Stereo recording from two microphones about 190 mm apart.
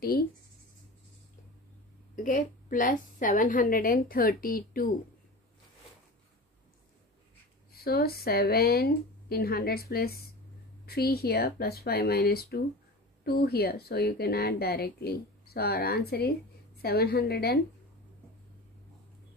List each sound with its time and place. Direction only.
2.2 s a woman's voice: 45° left (ahead or behind)
7.7 s a woman's voice: 55° left (ahead or behind)